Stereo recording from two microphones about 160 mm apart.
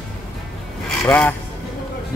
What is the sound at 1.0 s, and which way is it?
Speech, 10° left (ahead or behind).